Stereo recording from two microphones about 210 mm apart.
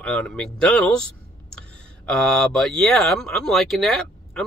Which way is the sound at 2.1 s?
Centre (ahead or behind).